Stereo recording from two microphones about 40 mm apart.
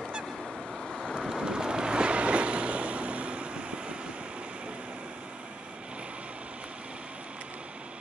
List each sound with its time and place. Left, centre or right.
1.3 s vehicle: centre